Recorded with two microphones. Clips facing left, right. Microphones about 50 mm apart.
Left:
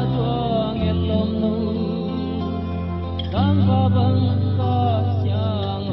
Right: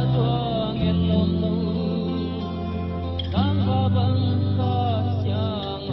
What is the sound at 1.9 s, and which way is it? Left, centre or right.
Music, centre.